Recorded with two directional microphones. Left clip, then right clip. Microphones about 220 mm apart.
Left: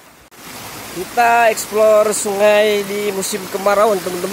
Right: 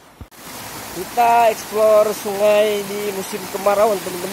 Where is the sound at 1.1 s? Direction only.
15° left (ahead or behind).